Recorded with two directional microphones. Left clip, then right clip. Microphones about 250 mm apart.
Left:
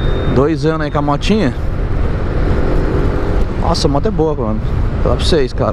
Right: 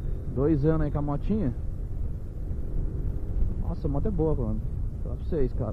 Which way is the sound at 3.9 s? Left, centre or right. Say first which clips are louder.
Left 14 dB; left.